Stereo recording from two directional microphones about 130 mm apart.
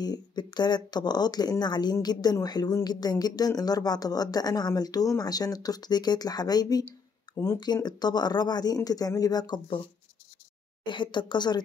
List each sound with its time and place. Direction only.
0.0 s speech: 30° left (ahead or behind)
10.9 s speech: 35° left (ahead or behind)